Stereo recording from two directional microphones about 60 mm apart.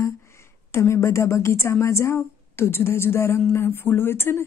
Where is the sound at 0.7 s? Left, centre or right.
Left.